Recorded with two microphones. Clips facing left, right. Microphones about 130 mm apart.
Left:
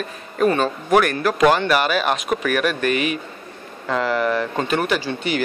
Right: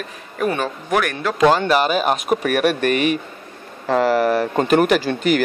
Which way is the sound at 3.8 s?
40° right (ahead or behind).